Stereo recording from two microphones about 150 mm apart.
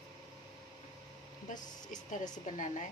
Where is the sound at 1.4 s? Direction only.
55° left (ahead or behind).